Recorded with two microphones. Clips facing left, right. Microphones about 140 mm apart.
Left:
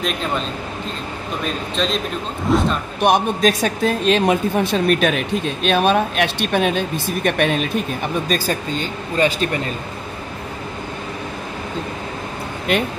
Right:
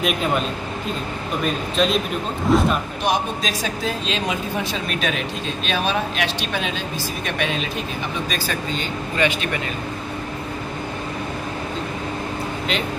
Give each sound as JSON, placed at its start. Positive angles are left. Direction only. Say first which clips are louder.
{"t": 0.0, "sound": "speech", "louder": "right 2 dB", "side_deg": -5}
{"t": 1.4, "sound": "speech", "louder": "right 2 dB", "side_deg": -5}
{"t": 3.0, "sound": "speech", "louder": "left 6 dB", "side_deg": 55}
{"t": 8.3, "sound": "speech", "louder": "left 4 dB", "side_deg": 40}